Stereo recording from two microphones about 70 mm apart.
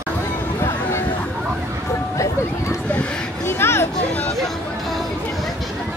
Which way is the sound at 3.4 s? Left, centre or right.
Left.